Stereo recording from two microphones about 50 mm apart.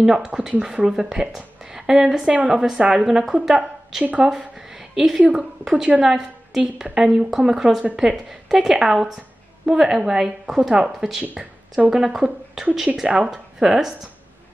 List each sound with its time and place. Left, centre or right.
0.0 s speech: centre
4.0 s speech: right
4.4 s a sound: centre
5.3 s a woman's voice: centre